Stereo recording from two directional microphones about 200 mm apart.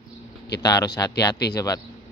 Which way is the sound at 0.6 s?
20° left (ahead or behind).